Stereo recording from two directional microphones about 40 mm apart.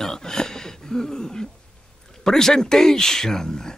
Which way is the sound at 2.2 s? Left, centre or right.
Centre.